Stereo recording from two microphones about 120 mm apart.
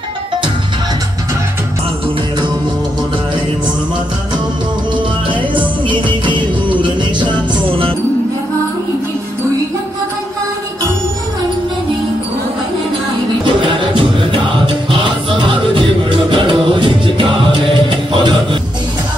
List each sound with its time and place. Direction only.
4.9 s music: 45° right (ahead or behind)
13.4 s music: 40° right (ahead or behind)